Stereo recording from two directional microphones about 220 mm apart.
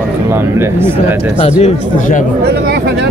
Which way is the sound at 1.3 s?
30° left (ahead or behind).